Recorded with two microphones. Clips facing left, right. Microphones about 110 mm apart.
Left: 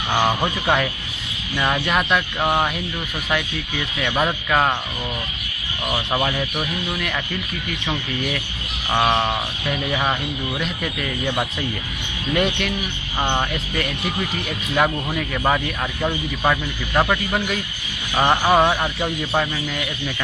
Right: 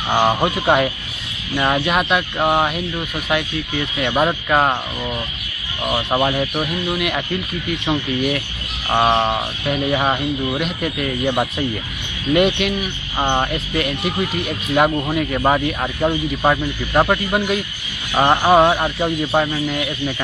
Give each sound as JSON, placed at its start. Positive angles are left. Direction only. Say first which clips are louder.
{"t": 0.1, "sound": "speech", "louder": "right 4 dB", "side_deg": -15}
{"t": 4.0, "sound": "speech", "louder": "right 3 dB", "side_deg": -15}
{"t": 5.9, "sound": "speech", "louder": "right 4 dB", "side_deg": -15}
{"t": 12.4, "sound": "speech", "louder": "right 5 dB", "side_deg": -5}